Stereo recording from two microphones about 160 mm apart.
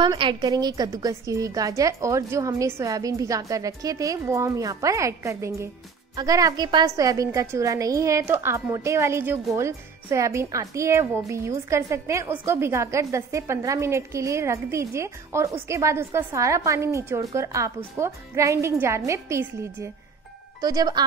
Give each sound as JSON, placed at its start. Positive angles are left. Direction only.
{"t": 0.0, "sound": "a woman's voice", "side_deg": -30}